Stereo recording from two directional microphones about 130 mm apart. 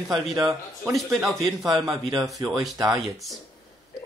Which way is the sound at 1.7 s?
35° right (ahead or behind).